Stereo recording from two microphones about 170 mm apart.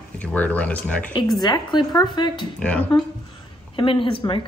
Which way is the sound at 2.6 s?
10° left (ahead or behind).